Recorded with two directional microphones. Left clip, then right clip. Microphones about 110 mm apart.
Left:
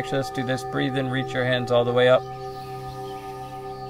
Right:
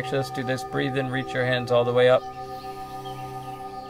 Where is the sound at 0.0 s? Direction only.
30° left (ahead or behind).